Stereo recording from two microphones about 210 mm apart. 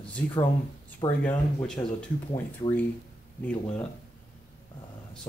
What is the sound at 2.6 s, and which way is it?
Speech, 25° left (ahead or behind).